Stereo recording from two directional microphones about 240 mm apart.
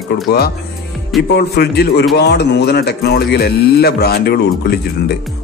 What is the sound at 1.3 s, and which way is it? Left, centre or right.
A man's voice, left.